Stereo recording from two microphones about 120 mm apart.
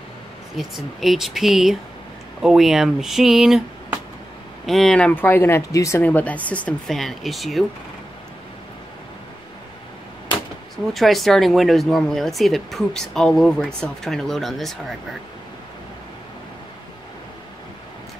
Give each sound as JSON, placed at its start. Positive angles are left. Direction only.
{"t": 0.6, "sound": "speech", "side_deg": 0}
{"t": 4.6, "sound": "speech", "side_deg": 0}
{"t": 6.0, "sound": "speech", "side_deg": 15}
{"t": 10.9, "sound": "speech", "side_deg": 0}